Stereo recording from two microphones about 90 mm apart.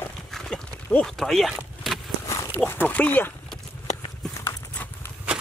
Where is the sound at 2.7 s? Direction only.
20° left (ahead or behind).